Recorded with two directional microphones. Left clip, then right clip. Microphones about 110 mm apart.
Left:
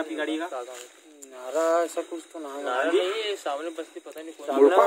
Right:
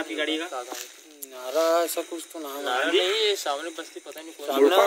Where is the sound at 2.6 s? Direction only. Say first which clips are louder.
Right 1 dB; 60° left (ahead or behind).